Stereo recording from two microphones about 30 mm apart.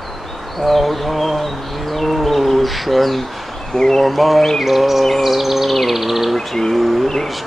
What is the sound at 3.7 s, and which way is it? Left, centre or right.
Bird, centre.